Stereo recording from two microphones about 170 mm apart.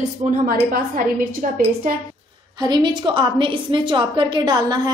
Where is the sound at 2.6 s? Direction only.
25° right (ahead or behind).